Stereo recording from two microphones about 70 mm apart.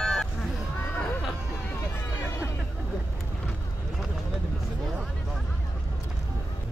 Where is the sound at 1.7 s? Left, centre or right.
Left.